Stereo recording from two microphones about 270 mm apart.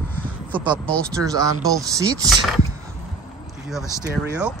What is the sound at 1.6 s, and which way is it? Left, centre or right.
Speech, centre.